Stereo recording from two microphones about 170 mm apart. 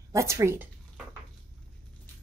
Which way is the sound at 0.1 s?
15° right (ahead or behind).